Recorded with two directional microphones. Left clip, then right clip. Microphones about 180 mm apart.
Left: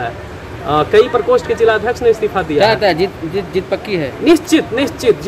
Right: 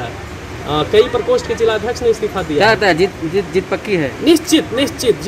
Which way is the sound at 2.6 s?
25° right (ahead or behind).